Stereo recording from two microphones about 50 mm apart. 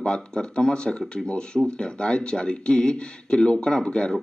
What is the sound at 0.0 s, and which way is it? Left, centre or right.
Speech, centre.